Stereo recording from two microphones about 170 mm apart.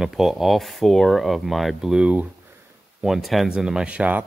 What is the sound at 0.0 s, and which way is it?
Speech, centre (ahead or behind).